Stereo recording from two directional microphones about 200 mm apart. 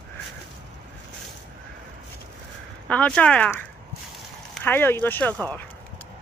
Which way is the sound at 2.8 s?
5° left (ahead or behind).